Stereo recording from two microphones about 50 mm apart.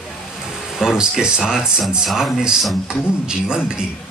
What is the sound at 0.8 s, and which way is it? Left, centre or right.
Speech, centre.